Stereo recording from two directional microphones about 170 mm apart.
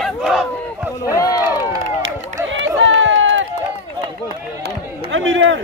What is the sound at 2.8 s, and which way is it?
Run, 90° right.